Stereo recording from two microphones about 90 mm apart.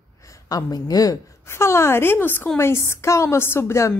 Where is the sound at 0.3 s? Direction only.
45° left (ahead or behind).